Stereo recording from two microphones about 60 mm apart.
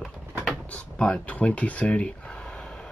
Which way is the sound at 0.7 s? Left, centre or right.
Centre.